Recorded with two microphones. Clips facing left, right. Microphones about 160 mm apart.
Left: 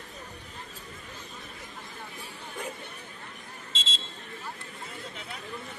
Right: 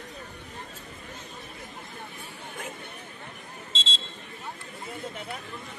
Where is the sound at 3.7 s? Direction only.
30° right (ahead or behind).